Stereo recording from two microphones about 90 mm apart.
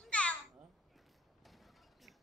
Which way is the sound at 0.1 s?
10° left (ahead or behind).